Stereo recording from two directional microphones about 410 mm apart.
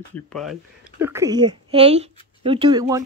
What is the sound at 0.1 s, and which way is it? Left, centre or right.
A woman's voice, centre.